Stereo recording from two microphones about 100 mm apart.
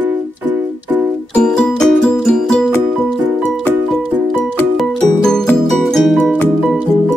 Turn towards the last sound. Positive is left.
turn(degrees=0)  # may be behind; listen again after turning